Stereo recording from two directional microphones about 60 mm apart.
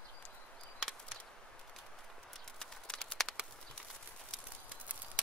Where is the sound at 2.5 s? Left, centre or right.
Centre.